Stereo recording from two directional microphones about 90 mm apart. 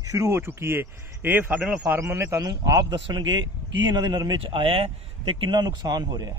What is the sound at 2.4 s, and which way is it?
A man's voice, 50° right (ahead or behind).